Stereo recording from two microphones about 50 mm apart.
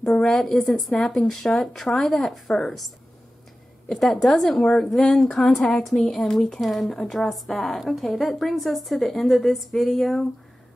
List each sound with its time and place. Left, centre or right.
0.1 s a woman's voice: left
0.4 s a woman's voice: centre
3.9 s a woman's voice: centre